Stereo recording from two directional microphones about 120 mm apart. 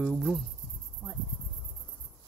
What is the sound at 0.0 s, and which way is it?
Speech, 5° left (ahead or behind).